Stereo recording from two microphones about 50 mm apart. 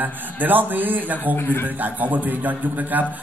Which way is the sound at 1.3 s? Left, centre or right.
Left.